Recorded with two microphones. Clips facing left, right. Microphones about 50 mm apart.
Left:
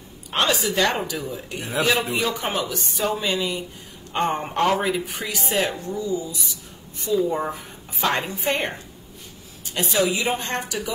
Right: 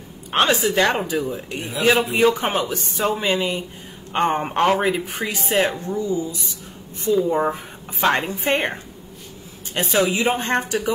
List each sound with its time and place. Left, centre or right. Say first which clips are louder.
0.3 s a woman's voice: right 4 dB; right
9.8 s a woman's voice: right 2 dB; right